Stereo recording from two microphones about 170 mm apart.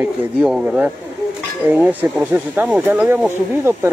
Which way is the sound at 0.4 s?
5° right (ahead or behind).